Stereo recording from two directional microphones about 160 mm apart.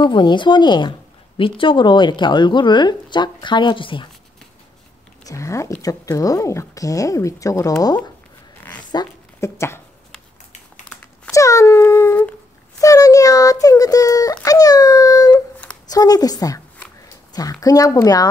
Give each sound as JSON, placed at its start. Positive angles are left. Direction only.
{"t": 0.0, "sound": "speech", "side_deg": 30}
{"t": 5.2, "sound": "speech", "side_deg": 20}
{"t": 11.3, "sound": "a sound", "side_deg": 20}
{"t": 12.8, "sound": "a child's voice", "side_deg": 20}
{"t": 15.3, "sound": "a sound", "side_deg": 5}
{"t": 15.9, "sound": "speech", "side_deg": 25}